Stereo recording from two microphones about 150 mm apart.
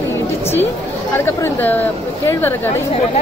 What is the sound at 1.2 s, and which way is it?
Speech, 15° left (ahead or behind).